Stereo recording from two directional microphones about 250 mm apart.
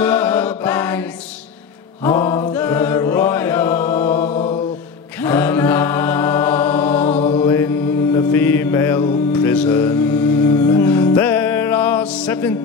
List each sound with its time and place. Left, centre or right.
0.0 s mantra: centre
2.0 s mantra: centre
2.5 s chant: centre
4.2 s mantra: left
5.2 s chant: centre
7.1 s mantra: left
7.4 s mantra: centre